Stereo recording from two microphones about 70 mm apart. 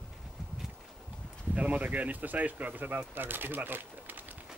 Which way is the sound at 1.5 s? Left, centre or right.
Centre.